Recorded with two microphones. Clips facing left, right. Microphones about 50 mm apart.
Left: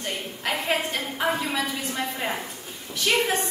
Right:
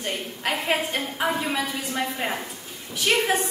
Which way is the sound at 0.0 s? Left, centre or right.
Centre.